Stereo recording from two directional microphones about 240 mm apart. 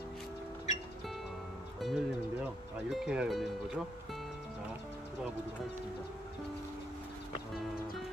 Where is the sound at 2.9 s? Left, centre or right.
Centre.